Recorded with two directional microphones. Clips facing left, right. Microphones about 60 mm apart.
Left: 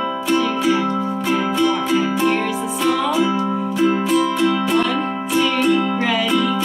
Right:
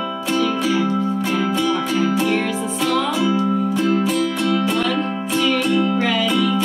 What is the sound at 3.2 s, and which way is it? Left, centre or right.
Music, left.